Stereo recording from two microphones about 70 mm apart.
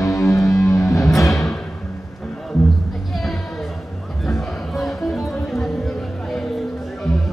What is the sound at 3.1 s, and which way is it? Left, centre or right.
Music, centre.